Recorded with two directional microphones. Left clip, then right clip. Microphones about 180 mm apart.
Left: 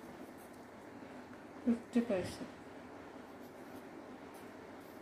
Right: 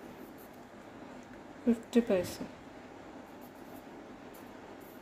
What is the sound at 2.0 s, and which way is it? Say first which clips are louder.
Speech: right 8 dB; 60° right (ahead or behind).